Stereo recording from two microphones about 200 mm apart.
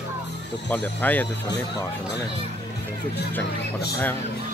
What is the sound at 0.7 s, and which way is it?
Speech, 10° left (ahead or behind).